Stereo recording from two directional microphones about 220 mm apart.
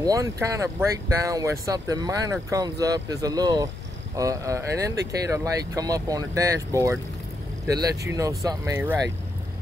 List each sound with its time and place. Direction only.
0.0 s speech: 15° right (ahead or behind)